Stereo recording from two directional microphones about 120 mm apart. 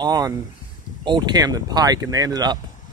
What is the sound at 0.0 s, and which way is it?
Speech, 30° right (ahead or behind).